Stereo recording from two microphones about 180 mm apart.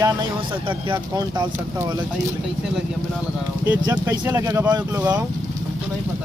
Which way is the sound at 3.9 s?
10° right (ahead or behind).